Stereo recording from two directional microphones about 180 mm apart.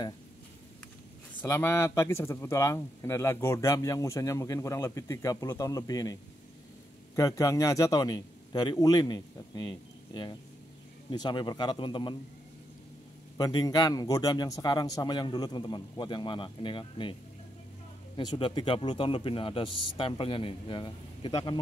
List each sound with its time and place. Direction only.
1.4 s speech: 15° left (ahead or behind)
7.2 s a man's voice: 20° left (ahead or behind)
13.4 s a man's voice: 25° left (ahead or behind)
18.1 s a man's voice: 25° left (ahead or behind)